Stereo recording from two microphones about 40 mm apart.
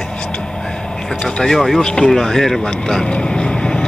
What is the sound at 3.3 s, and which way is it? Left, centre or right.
Vehicle, left.